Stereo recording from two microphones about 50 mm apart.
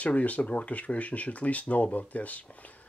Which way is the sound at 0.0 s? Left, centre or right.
Left.